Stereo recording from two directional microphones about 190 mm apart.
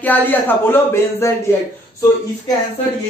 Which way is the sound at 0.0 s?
10° left (ahead or behind).